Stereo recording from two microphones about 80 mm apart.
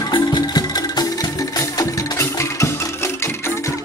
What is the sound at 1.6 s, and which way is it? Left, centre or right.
Music, left.